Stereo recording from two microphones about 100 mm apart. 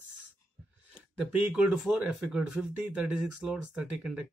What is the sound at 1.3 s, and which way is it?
Speech, 15° right (ahead or behind).